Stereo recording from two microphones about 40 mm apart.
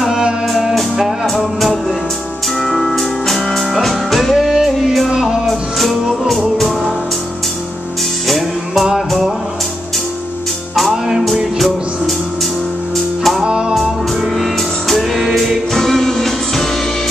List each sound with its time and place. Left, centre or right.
0.5 s music: centre
2.6 s music: centre
5.1 s music: centre
5.5 s music: centre
8.3 s music: centre
11.5 s music: centre
13.4 s music: centre
13.7 s music: centre
15.1 s music: centre
15.7 s music: centre